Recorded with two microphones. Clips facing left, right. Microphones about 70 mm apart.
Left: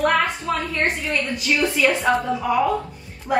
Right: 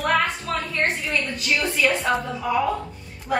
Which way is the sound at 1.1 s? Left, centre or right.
Centre.